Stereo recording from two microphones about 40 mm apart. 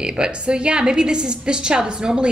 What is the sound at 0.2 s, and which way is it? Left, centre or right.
A woman's voice, right.